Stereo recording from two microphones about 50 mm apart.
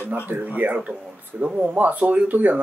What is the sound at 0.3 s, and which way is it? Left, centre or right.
Speech, right.